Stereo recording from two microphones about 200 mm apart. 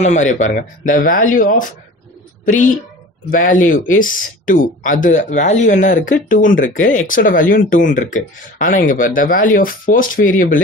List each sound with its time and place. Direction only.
0.0 s speech: 35° left (ahead or behind)
3.3 s speech: 45° left (ahead or behind)